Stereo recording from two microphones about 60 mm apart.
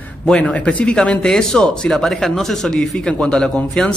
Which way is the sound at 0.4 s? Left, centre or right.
Left.